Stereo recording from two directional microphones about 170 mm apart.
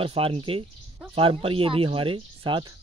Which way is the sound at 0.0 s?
30° right (ahead or behind).